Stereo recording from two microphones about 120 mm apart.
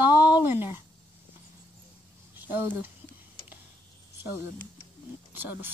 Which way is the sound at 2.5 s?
15° right (ahead or behind).